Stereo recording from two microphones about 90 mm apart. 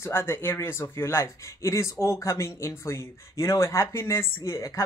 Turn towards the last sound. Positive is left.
turn(degrees=35)  # may be behind; listen again after turning